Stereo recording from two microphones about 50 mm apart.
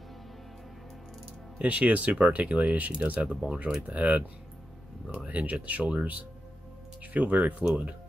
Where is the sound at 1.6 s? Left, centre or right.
Right.